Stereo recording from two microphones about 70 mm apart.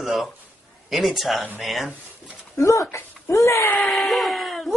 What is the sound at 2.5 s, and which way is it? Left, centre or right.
Speech, left.